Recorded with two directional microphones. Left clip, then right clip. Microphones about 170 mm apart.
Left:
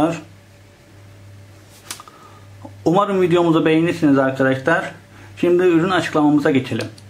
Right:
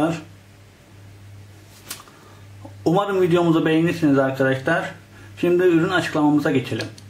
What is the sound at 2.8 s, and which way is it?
A man's voice, 30° left (ahead or behind).